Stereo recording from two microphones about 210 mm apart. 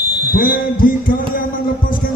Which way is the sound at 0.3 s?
40° left (ahead or behind).